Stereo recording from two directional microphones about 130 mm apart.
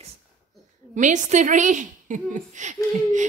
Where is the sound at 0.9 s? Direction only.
70° right (ahead or behind).